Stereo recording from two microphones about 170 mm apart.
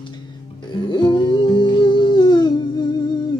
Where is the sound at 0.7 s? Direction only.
25° left (ahead or behind).